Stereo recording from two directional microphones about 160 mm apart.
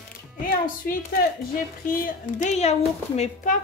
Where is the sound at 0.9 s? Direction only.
60° left (ahead or behind).